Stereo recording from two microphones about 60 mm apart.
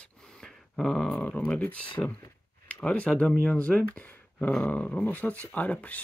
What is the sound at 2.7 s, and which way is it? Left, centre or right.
Speech, left.